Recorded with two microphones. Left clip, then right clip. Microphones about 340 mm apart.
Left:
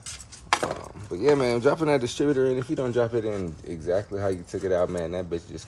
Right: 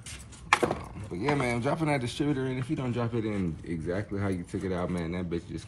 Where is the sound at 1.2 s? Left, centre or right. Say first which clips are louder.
Left 8 dB; centre.